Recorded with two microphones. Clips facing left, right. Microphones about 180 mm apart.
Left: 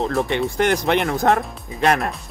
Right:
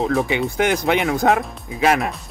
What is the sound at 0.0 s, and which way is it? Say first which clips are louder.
Speech: right 1 dB; centre (ahead or behind).